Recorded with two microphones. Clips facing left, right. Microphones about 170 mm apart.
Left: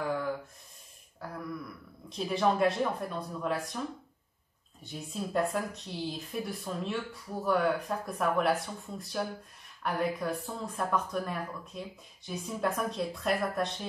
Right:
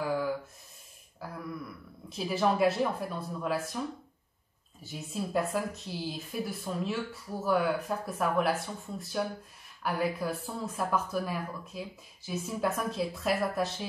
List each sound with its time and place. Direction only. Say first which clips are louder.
0.0 s gasp: right 2 dB; 5° right (ahead or behind)
1.2 s a sound: even; 5° right (ahead or behind)
2.0 s speech: even; 5° right (ahead or behind)
4.8 s speech: right 1 dB; centre (ahead or behind)